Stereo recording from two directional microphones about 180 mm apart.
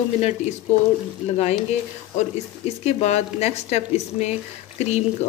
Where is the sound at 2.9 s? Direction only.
35° left (ahead or behind).